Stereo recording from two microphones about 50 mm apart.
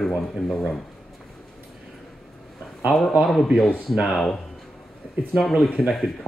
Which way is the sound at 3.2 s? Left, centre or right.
Centre.